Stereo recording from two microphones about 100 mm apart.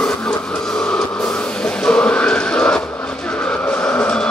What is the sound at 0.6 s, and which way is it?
Music, 5° left (ahead or behind).